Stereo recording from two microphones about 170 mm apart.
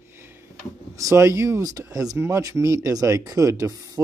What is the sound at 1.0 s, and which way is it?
Speech, 20° right (ahead or behind).